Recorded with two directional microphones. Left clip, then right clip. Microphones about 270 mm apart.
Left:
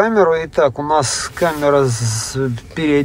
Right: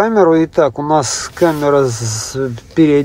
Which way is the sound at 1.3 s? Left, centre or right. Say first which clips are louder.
Right 3 dB; centre.